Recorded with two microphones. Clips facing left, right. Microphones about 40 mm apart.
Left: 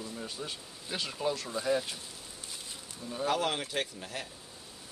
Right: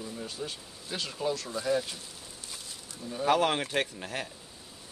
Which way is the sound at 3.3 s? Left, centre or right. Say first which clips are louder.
Right 6 dB; right.